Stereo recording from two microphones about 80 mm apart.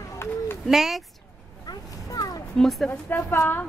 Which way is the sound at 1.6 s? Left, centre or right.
Left.